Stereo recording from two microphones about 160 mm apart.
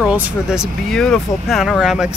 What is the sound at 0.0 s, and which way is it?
Speech, 5° right (ahead or behind).